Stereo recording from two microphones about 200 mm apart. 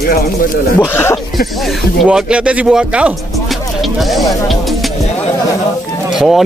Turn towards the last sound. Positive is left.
turn(degrees=0)  # may be behind; listen again after turning